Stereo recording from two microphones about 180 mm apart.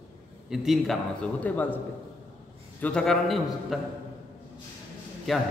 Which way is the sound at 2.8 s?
5° left (ahead or behind).